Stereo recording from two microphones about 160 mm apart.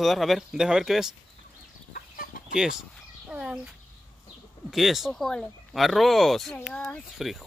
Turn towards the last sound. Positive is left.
turn(degrees=0)  # may be behind; listen again after turning